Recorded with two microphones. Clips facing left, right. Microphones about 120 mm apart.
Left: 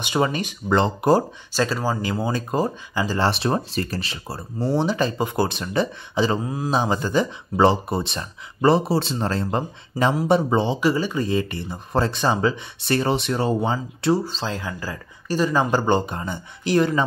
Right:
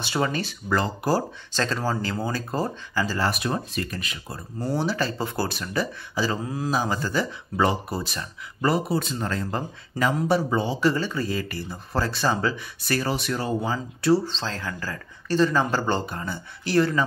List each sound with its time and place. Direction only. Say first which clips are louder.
0.0 s speech: left 3 dB; 20° left (ahead or behind)
1.5 s speech: left 3 dB; 10° left (ahead or behind)
10.8 s speech: left 2 dB; 15° left (ahead or behind)
14.2 s speech: left 3 dB; 10° left (ahead or behind)